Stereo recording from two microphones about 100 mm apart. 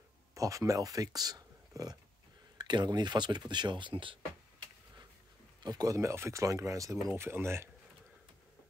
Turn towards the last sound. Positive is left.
turn(degrees=-25)  # may be behind; listen again after turning